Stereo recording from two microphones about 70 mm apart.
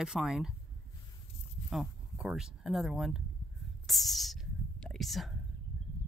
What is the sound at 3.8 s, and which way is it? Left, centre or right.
Whispering, centre.